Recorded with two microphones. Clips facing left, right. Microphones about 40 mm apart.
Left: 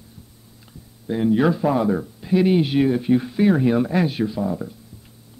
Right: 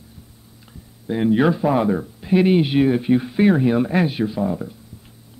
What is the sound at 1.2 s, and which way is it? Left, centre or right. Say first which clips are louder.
Speech: right 1 dB; right.